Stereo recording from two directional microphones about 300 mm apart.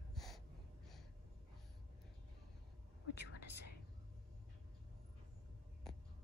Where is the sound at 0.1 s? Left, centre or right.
Centre.